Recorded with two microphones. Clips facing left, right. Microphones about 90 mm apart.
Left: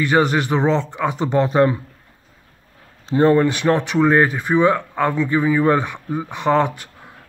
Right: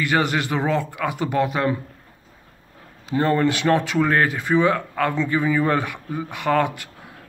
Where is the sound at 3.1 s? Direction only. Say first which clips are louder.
Left 6 dB; 25° left (ahead or behind).